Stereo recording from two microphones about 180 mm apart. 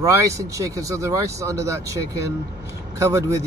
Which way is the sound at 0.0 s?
15° right (ahead or behind).